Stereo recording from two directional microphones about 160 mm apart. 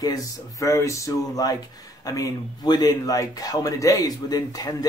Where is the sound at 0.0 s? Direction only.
20° left (ahead or behind).